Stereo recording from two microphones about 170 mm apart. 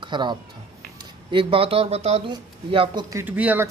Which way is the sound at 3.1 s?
10° right (ahead or behind).